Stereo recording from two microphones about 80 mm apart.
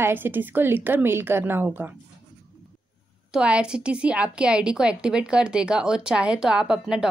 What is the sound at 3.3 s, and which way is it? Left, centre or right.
A woman's voice, centre.